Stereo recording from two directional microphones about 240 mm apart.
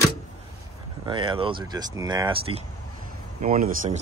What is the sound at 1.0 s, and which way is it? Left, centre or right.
Speech, right.